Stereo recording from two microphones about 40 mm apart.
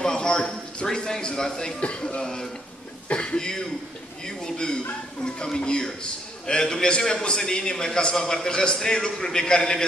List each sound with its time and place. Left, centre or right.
0.0 s a sound: left
0.8 s a man's voice: centre
3.1 s speech: left
3.3 s a man's voice: centre